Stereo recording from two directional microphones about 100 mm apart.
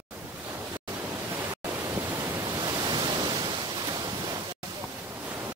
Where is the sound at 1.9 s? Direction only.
30° right (ahead or behind).